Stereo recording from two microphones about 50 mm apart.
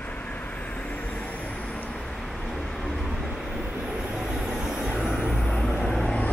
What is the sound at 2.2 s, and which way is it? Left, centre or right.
Vehicle, centre.